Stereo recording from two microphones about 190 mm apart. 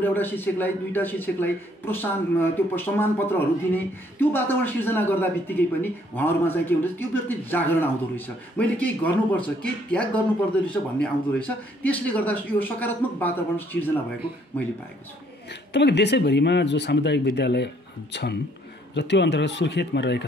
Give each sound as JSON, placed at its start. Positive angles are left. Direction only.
{"t": 0.0, "sound": "a man's voice", "side_deg": 10}
{"t": 15.7, "sound": "speech", "side_deg": 65}